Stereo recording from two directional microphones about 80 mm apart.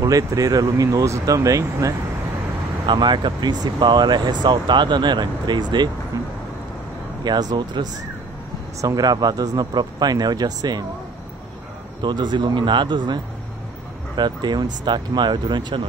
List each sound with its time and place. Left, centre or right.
0.0 s speech: right
2.9 s speech: right
6.1 s vehicle: right
7.2 s speech: right
8.8 s speech: right
12.0 s speech: right